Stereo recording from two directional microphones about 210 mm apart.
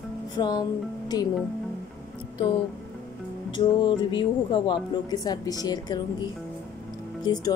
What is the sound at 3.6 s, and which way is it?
Speech, 20° left (ahead or behind).